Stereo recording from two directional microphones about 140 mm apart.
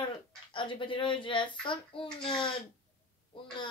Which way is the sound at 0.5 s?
35° left (ahead or behind).